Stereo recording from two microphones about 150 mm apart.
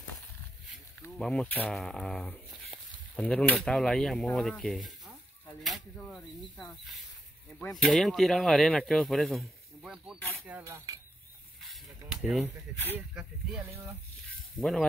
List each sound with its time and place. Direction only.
1.2 s speech: 5° left (ahead or behind)
10.5 s cutlery: 20° right (ahead or behind)
12.1 s speech: 5° right (ahead or behind)
14.6 s speech: centre (ahead or behind)